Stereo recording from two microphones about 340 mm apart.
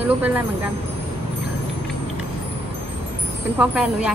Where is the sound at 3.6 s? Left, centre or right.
Centre.